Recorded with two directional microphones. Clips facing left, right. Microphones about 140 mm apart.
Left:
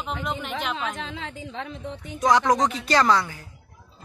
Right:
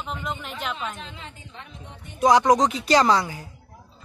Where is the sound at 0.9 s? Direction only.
90° left.